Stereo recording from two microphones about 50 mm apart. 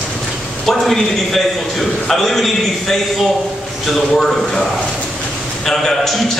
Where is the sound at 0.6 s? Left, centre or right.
Centre.